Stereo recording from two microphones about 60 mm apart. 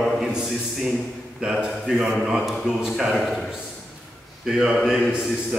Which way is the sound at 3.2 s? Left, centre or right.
Centre.